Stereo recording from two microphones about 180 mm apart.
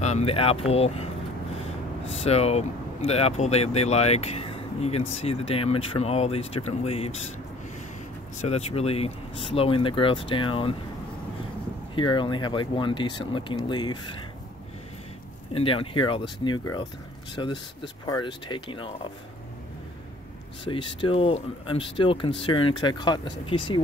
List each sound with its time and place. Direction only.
0.0 s speech: 35° left (ahead or behind)
8.4 s speech: 35° left (ahead or behind)
11.9 s speech: 25° left (ahead or behind)
15.5 s speech: 30° left (ahead or behind)
20.6 s speech: 30° left (ahead or behind)